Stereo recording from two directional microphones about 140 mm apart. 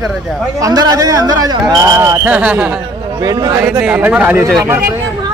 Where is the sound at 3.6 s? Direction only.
10° right (ahead or behind).